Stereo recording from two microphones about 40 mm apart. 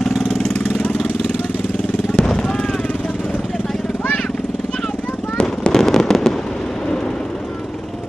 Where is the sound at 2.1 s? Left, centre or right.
Centre.